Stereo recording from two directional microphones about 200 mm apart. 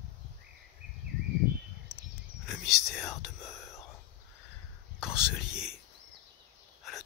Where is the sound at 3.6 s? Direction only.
15° left (ahead or behind).